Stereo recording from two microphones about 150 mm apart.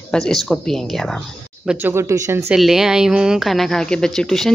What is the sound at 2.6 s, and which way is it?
Speech, 5° right (ahead or behind).